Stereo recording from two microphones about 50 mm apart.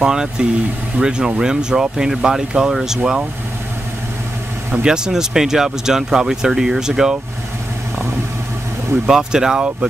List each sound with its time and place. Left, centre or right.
0.0 s speech: centre
4.8 s speech: centre
9.0 s speech: centre